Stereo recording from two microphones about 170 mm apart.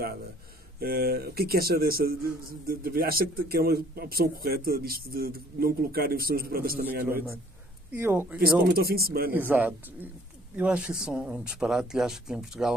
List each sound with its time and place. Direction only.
0.7 s a man's voice: 60° right (ahead or behind)
7.9 s speech: 15° right (ahead or behind)
8.4 s a man's voice: 60° right (ahead or behind)
9.3 s speech: 10° right (ahead or behind)